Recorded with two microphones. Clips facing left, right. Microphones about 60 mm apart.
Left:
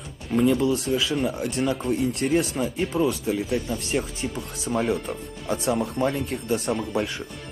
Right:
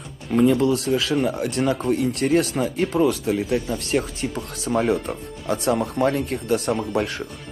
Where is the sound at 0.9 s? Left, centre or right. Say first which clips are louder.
Right 3 dB; right.